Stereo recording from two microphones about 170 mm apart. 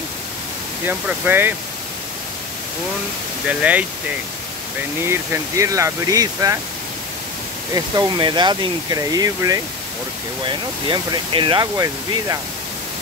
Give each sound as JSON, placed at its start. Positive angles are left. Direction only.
{"t": 0.8, "sound": "speech", "side_deg": -10}
{"t": 3.4, "sound": "speech", "side_deg": -10}
{"t": 5.0, "sound": "speech", "side_deg": -15}
{"t": 7.7, "sound": "speech", "side_deg": -25}